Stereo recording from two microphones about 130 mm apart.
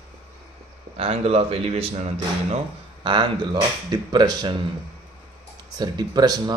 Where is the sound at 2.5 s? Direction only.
40° right (ahead or behind).